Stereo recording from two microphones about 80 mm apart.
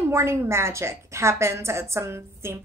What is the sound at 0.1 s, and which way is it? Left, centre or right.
A woman's voice, right.